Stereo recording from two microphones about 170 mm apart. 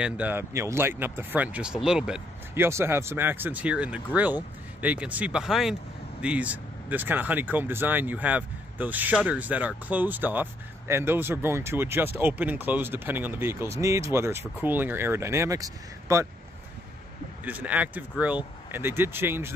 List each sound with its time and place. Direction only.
0.0 s speech: 10° right (ahead or behind)
17.5 s speech: 10° right (ahead or behind)